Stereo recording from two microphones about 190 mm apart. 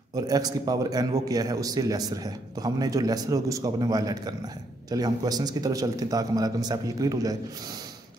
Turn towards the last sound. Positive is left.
turn(degrees=-20)  # may be behind; listen again after turning